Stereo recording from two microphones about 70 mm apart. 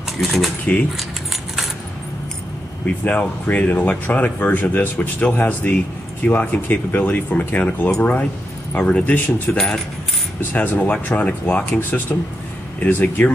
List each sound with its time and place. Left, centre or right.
0.7 s speech: left
3.0 s speech: left